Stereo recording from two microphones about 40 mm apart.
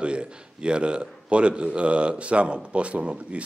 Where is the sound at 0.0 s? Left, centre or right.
Right.